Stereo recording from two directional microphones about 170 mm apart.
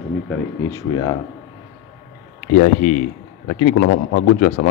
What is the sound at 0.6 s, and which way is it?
Speech, 20° left (ahead or behind).